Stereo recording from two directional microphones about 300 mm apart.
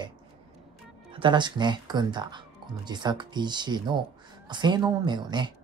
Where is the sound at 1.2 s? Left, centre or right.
Centre.